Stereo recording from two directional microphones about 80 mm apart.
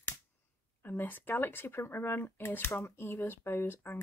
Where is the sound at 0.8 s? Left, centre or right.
Left.